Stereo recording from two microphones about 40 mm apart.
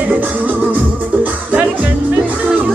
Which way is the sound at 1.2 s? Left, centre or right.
Right.